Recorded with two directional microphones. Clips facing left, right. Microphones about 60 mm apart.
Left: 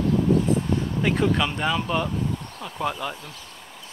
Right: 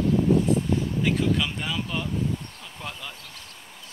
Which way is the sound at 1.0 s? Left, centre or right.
Left.